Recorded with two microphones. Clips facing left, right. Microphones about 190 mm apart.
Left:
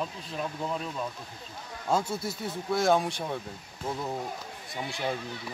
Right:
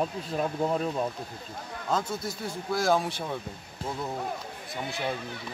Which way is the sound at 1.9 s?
10° left (ahead or behind).